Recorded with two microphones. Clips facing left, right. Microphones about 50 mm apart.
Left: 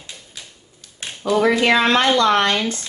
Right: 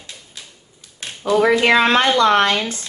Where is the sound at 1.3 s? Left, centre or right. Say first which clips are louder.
Right 2 dB; centre.